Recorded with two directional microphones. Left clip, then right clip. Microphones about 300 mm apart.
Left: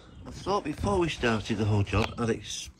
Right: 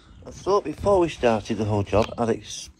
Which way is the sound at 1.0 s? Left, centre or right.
Centre.